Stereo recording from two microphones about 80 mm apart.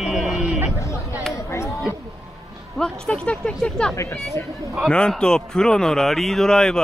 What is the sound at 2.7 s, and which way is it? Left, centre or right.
Speech, centre.